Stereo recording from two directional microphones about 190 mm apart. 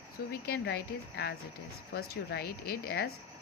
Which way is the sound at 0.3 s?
55° left (ahead or behind).